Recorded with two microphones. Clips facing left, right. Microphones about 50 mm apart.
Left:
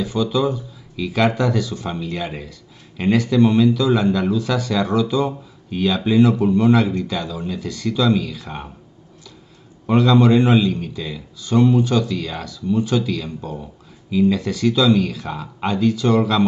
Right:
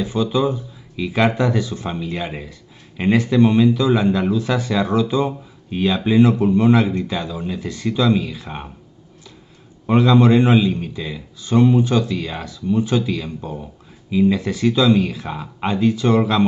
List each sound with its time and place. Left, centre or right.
0.0 s speech: right
9.8 s speech: centre